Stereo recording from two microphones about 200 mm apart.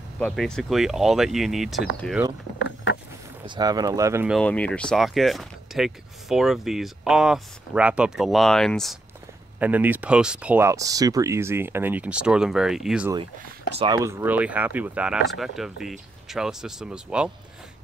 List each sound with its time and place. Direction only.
0.2 s speech: 5° left (ahead or behind)
2.6 s vehicle: 60° left (ahead or behind)
3.4 s speech: 20° right (ahead or behind)
4.3 s speech: 5° left (ahead or behind)
9.6 s speech: 10° right (ahead or behind)
13.7 s speech: 20° right (ahead or behind); by 17.3 s 5° right (ahead or behind)